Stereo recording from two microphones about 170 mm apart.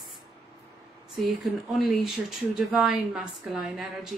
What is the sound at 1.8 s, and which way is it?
A woman's voice, centre (ahead or behind).